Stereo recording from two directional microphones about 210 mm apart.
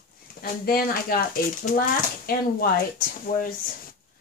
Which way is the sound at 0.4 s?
45° left (ahead or behind).